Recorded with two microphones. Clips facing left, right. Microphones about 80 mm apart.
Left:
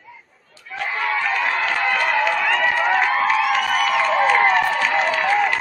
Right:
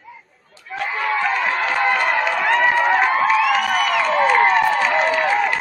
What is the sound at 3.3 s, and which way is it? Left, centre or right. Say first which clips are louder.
Music: right 2 dB; centre.